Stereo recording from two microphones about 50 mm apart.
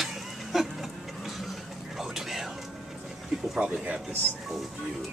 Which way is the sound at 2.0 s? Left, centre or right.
Centre.